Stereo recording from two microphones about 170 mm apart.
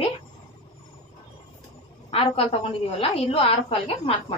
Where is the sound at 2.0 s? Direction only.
35° left (ahead or behind).